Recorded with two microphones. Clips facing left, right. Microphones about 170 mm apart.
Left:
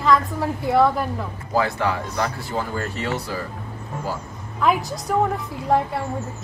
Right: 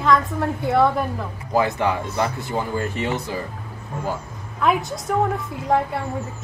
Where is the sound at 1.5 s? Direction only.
20° right (ahead or behind).